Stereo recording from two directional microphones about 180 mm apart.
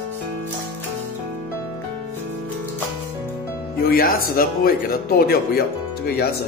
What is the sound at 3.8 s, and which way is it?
Speech, 55° left (ahead or behind).